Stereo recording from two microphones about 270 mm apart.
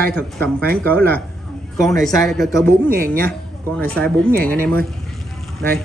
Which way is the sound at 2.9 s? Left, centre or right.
Right.